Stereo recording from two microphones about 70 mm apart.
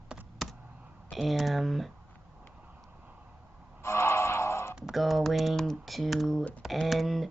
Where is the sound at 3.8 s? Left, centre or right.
Left.